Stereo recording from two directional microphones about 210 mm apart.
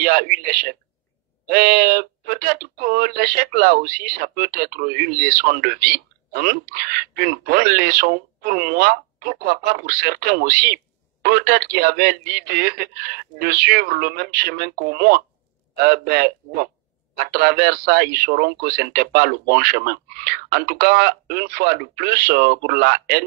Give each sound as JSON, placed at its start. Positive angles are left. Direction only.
{"t": 0.0, "sound": "speech", "side_deg": -45}